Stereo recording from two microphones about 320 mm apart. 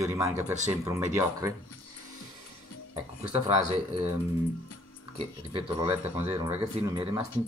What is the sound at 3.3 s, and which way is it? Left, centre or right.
Speech, centre.